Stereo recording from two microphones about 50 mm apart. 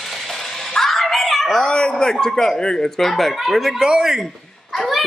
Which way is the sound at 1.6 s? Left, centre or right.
Centre.